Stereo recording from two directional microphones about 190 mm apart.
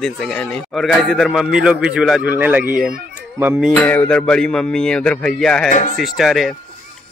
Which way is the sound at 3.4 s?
10° right (ahead or behind).